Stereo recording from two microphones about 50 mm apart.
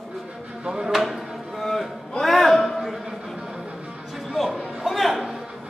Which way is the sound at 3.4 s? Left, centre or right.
Centre.